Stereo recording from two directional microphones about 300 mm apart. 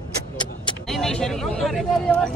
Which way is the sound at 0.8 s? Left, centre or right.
Centre.